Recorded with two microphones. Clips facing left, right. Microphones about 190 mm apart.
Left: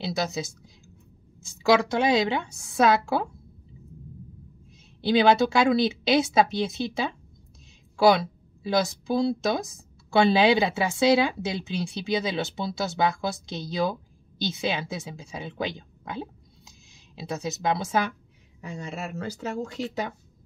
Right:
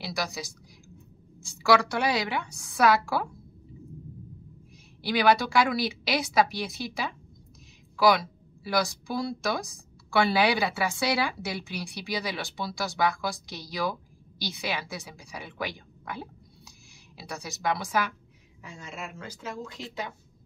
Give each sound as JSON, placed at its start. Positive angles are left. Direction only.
{"t": 0.0, "sound": "speech", "side_deg": 25}
{"t": 5.0, "sound": "a woman's voice", "side_deg": 25}
{"t": 18.8, "sound": "speech", "side_deg": 35}